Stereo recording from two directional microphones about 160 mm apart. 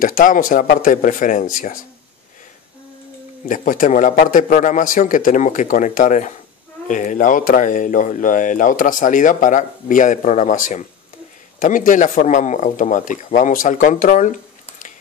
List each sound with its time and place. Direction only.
0.0 s speech: 60° left (ahead or behind)
3.4 s speech: 55° left (ahead or behind)